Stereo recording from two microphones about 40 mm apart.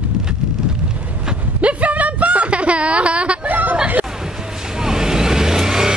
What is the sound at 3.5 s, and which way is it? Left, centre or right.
Chatter, right.